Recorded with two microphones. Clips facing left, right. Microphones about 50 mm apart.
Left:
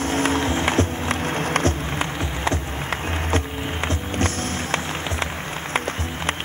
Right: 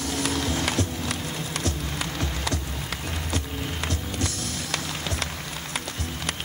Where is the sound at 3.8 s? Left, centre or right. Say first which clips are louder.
Left 8 dB; left.